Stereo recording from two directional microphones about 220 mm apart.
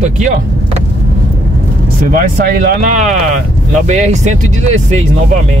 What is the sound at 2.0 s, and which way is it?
Speech, 40° right (ahead or behind).